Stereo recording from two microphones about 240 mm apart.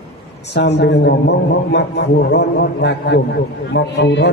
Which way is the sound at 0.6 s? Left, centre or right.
Left.